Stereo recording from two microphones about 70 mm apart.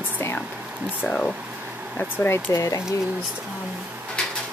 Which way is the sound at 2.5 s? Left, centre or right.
Left.